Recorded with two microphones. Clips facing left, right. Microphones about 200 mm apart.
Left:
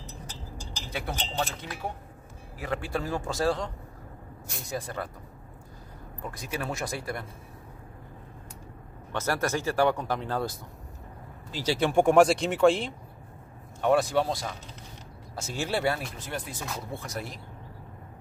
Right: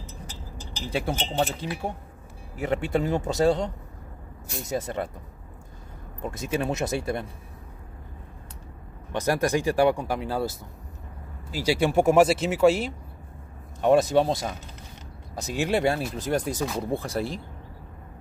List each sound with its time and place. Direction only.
0.8 s a man's voice: 30° right (ahead or behind)
6.2 s a man's voice: 25° right (ahead or behind)
9.1 s speech: 15° right (ahead or behind)
11.5 s speech: 10° right (ahead or behind)
13.7 s a man's voice: 20° right (ahead or behind)
16.2 s speech: 40° right (ahead or behind)